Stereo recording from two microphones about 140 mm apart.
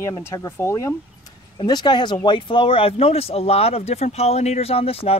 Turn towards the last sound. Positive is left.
turn(degrees=45)  # may be behind; listen again after turning